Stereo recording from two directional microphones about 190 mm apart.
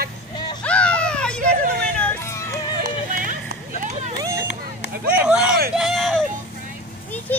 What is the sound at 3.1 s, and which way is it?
Run, 45° right (ahead or behind).